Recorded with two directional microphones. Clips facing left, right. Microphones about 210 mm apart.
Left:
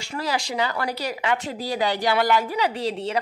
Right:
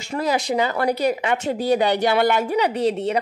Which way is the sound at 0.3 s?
20° right (ahead or behind).